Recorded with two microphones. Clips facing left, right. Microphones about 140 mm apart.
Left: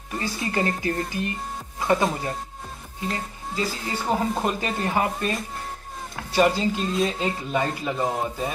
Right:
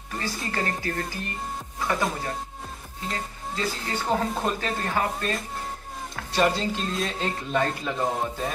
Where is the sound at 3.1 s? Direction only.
5° left (ahead or behind).